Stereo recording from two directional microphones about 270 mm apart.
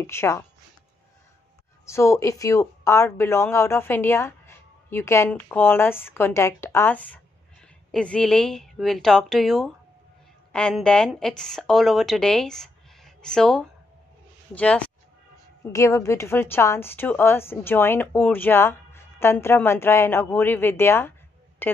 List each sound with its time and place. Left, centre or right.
0.0 s a woman's voice: centre
1.9 s a woman's voice: centre